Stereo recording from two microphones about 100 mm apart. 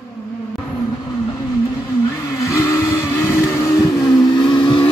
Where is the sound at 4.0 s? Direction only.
45° left (ahead or behind).